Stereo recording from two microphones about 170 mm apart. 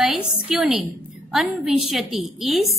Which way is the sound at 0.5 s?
5° right (ahead or behind).